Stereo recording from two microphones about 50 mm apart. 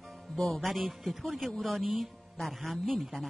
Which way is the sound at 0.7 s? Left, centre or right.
Centre.